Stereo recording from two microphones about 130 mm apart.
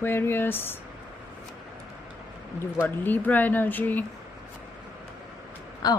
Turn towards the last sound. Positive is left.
turn(degrees=30)  # may be behind; listen again after turning